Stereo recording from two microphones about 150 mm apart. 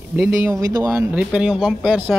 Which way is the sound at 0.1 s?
15° right (ahead or behind).